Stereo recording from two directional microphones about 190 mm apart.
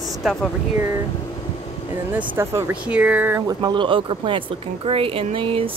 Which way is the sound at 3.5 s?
20° right (ahead or behind).